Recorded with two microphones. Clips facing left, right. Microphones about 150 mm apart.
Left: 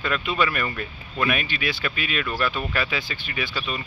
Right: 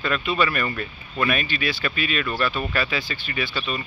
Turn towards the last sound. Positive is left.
turn(degrees=15)  # may be behind; listen again after turning